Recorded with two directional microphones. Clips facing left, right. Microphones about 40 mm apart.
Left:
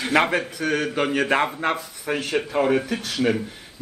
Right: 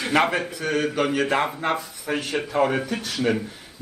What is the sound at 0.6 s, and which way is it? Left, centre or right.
A man's voice, left.